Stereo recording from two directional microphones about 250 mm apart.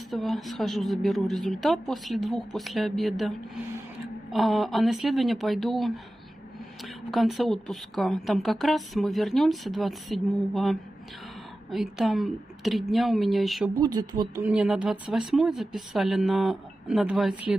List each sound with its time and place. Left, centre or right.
0.1 s speech: centre
13.7 s speech: centre